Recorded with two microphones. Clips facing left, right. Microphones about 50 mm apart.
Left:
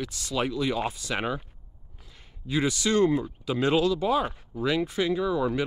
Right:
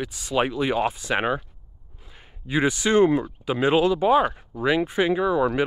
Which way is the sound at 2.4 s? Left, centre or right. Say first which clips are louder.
Right 4 dB; right.